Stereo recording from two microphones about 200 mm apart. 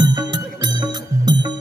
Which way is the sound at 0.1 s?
20° right (ahead or behind).